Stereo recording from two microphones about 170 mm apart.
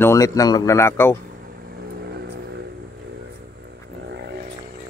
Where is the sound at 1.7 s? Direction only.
65° right (ahead or behind).